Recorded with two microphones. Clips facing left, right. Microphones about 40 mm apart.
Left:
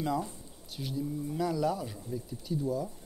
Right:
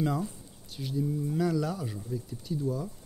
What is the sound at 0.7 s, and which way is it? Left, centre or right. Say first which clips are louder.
Speech: right 3 dB; centre.